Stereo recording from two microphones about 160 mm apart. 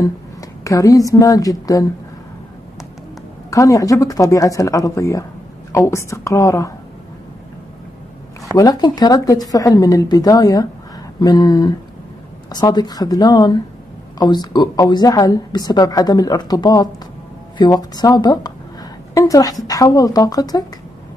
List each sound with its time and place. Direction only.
0.0 s a woman's voice: 20° left (ahead or behind)
3.4 s a woman's voice: 20° left (ahead or behind)
8.5 s a woman's voice: 25° left (ahead or behind)